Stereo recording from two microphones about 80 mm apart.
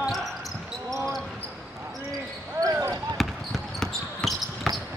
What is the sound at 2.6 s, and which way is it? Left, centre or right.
Basketball bounce, right.